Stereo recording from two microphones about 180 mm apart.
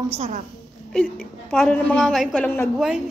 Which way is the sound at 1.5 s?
5° left (ahead or behind).